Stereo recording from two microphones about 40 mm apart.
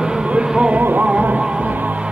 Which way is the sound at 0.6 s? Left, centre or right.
Right.